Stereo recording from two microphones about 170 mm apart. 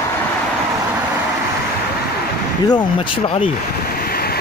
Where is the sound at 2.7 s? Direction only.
30° left (ahead or behind).